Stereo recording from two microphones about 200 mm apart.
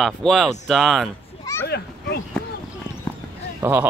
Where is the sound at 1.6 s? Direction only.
50° left (ahead or behind).